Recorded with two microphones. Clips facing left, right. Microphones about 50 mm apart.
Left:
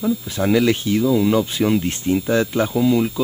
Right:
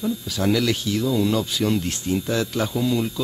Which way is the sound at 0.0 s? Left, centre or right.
Left.